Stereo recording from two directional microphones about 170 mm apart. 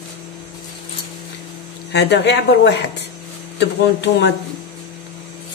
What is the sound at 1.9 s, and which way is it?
Speech, 90° left.